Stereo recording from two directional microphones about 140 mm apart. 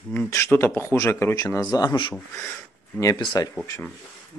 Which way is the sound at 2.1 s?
10° left (ahead or behind).